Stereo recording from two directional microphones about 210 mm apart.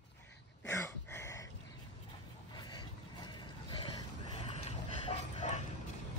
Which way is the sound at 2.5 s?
20° left (ahead or behind).